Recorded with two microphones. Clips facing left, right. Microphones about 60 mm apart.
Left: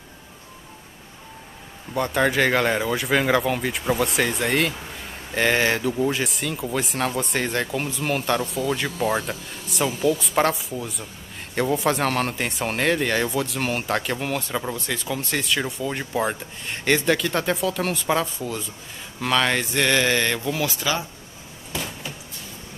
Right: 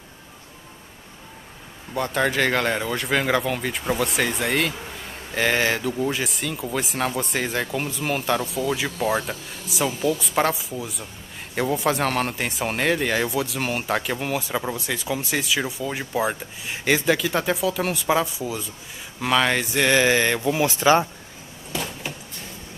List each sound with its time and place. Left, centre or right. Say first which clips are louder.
2.0 s speech: left 1 dB; centre
20.6 s speech: right 11 dB; right